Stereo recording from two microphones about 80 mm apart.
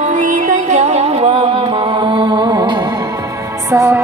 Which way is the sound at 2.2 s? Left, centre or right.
Right.